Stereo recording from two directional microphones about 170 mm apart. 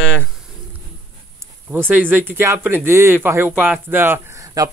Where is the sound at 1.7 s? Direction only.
10° right (ahead or behind).